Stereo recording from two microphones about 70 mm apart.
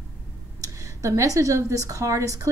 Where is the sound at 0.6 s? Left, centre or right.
Right.